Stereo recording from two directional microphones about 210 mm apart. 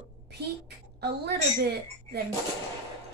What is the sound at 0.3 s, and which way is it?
A woman's voice, 50° right (ahead or behind).